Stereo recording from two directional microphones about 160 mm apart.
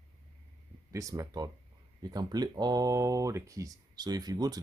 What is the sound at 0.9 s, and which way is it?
Speech, 20° right (ahead or behind).